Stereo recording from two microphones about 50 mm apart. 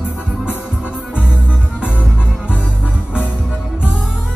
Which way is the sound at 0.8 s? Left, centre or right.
Right.